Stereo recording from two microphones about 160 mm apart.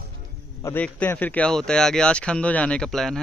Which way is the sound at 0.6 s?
10° left (ahead or behind).